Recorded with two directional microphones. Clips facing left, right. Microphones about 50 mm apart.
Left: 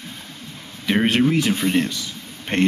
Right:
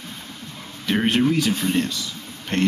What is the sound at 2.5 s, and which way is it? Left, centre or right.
Speech, left.